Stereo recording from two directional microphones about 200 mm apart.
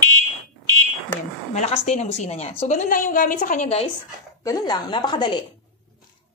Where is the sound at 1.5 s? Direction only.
35° left (ahead or behind).